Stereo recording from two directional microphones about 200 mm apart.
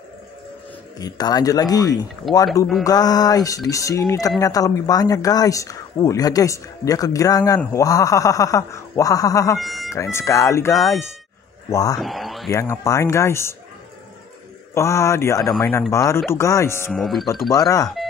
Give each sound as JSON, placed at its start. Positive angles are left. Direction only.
{"t": 0.9, "sound": "speech", "side_deg": 20}
{"t": 9.6, "sound": "speech", "side_deg": 0}
{"t": 9.9, "sound": "speech", "side_deg": 15}
{"t": 12.0, "sound": "speech", "side_deg": 0}
{"t": 12.4, "sound": "speech", "side_deg": 15}
{"t": 14.7, "sound": "speech", "side_deg": 15}
{"t": 16.9, "sound": "speech", "side_deg": 0}
{"t": 17.5, "sound": "speech", "side_deg": 15}